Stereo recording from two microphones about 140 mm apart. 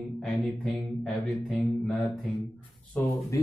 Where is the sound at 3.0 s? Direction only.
20° left (ahead or behind).